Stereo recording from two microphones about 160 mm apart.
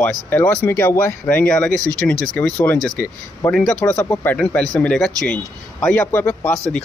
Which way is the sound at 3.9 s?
15° left (ahead or behind).